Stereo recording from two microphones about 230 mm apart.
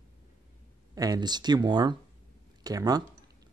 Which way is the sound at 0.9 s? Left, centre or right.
Centre.